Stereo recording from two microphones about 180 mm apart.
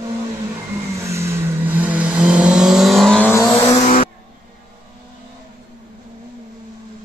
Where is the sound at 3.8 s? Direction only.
40° left (ahead or behind).